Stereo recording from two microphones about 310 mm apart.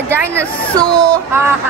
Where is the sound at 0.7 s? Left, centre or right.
Centre.